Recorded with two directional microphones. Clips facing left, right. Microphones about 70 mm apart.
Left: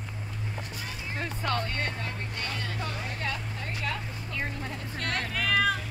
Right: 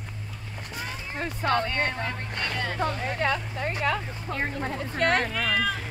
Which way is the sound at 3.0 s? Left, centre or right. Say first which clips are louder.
Right 7 dB; right.